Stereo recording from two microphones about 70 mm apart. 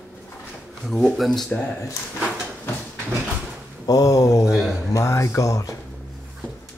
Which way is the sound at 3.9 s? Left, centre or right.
Left.